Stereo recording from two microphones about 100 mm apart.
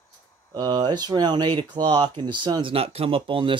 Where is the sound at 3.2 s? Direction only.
60° right (ahead or behind).